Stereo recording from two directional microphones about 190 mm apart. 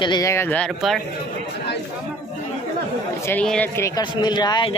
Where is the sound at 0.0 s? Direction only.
20° left (ahead or behind); by 1.0 s centre (ahead or behind).